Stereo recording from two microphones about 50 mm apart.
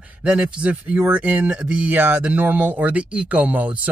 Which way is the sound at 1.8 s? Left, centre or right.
Right.